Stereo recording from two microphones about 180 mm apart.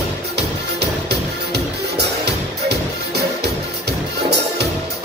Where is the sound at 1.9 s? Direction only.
65° right (ahead or behind).